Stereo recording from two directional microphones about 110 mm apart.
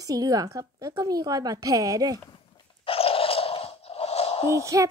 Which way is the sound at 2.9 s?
60° left (ahead or behind).